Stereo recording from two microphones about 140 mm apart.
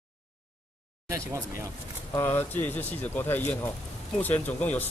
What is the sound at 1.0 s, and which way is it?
Speech, 20° right (ahead or behind).